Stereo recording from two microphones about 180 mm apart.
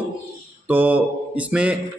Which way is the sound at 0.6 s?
10° right (ahead or behind).